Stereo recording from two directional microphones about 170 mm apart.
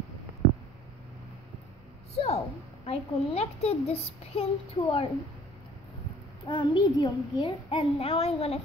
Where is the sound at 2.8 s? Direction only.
35° left (ahead or behind).